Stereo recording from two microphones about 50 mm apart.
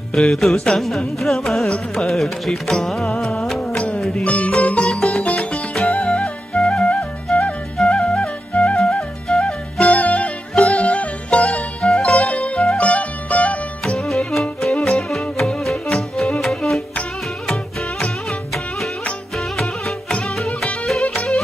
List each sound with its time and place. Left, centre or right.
0.1 s music: centre
3.7 s music: left
8.7 s music: centre; by 13.6 s left
13.8 s music: centre
17.5 s music: centre
19.3 s music: centre
21.1 s music: left